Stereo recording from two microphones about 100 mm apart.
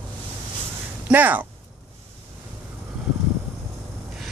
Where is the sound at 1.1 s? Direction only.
15° right (ahead or behind).